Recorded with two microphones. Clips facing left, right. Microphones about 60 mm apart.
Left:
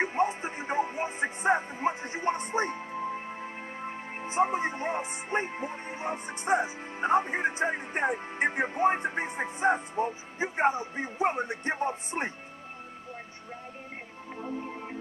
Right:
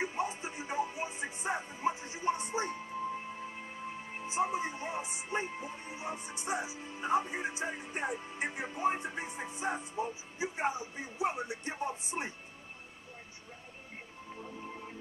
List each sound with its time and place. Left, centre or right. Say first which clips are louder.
0.0 s speech: left 8 dB; left
14.3 s music: left 8 dB; left